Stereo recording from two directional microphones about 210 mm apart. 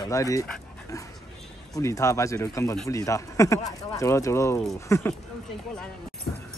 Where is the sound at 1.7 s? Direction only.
15° left (ahead or behind).